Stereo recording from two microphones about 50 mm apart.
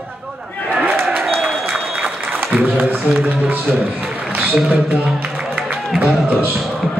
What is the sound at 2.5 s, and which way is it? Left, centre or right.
Music, right.